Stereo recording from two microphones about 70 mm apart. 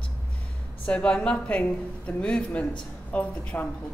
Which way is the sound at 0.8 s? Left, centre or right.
Centre.